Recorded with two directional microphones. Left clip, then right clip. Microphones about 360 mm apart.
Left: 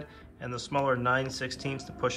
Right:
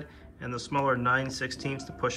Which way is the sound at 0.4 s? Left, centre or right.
Centre.